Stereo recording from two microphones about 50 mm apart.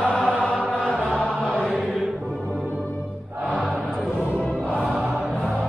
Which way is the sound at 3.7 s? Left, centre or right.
Left.